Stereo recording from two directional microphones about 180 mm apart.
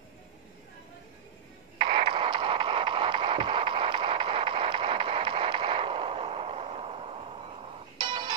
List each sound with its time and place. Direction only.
1.8 s radio: 30° right (ahead or behind)